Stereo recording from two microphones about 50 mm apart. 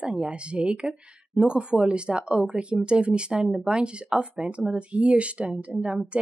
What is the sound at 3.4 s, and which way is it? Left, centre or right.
Speech, centre.